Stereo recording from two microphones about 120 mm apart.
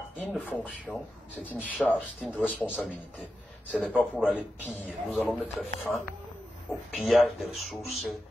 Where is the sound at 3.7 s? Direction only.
5° right (ahead or behind).